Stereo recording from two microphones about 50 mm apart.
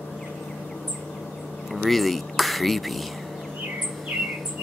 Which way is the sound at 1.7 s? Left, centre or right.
Centre.